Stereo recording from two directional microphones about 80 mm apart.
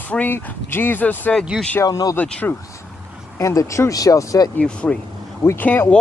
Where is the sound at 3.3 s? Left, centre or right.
Left.